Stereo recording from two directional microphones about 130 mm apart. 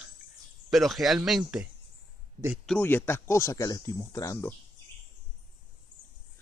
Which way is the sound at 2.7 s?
15° left (ahead or behind).